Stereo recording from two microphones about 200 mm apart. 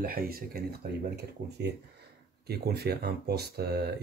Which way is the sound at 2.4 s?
50° right (ahead or behind).